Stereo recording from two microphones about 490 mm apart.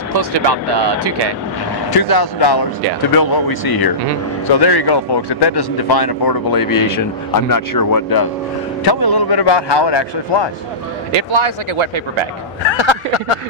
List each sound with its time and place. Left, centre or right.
0.1 s speech: right
1.9 s a man's voice: left
11.1 s a man's voice: right
12.6 s speech: left